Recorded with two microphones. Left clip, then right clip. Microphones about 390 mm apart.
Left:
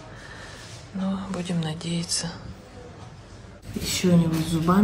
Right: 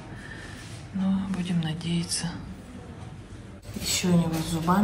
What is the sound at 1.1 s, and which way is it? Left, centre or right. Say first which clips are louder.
Speech: left 1 dB; centre.